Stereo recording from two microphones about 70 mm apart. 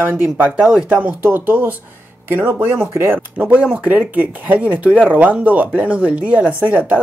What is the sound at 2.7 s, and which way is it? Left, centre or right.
Speech, right.